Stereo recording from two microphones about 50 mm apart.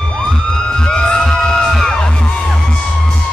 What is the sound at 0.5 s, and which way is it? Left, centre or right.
Music, centre.